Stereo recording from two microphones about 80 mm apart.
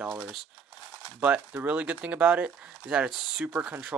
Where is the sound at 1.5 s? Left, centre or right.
Right.